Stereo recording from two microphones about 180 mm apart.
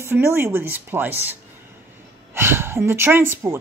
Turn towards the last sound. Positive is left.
turn(degrees=-15)  # may be behind; listen again after turning